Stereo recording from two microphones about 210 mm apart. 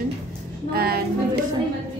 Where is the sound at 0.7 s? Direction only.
45° right (ahead or behind).